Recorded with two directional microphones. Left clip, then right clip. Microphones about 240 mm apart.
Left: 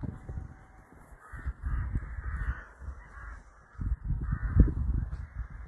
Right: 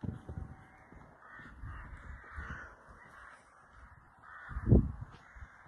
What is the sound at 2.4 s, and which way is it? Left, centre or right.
Crow, right.